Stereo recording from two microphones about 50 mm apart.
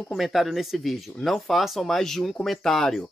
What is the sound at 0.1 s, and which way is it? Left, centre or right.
Speech, centre.